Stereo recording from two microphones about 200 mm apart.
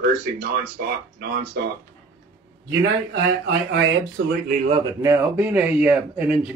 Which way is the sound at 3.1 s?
60° right (ahead or behind).